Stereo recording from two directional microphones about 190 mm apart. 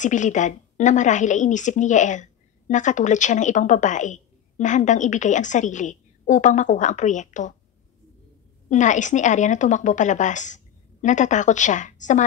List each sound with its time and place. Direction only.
0.0 s a woman's voice: 40° left (ahead or behind)
8.6 s a woman's voice: 40° left (ahead or behind)